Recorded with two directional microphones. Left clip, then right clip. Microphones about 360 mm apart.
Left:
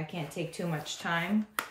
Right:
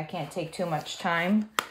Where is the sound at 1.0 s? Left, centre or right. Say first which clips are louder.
Right 4 dB; centre.